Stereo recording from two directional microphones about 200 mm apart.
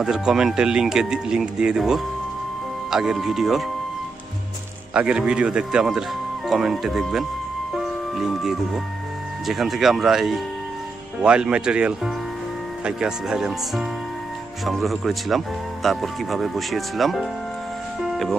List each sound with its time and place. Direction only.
0.0 s speech: centre (ahead or behind)
4.9 s speech: 5° right (ahead or behind)
7.7 s music: centre (ahead or behind)
9.5 s speech: centre (ahead or behind)
18.0 s music: centre (ahead or behind)